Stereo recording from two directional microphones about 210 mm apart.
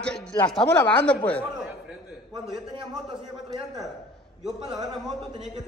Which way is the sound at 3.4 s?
15° right (ahead or behind).